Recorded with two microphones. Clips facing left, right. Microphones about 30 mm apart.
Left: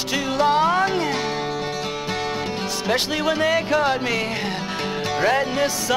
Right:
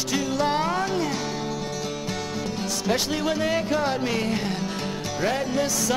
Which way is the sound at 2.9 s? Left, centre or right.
Left.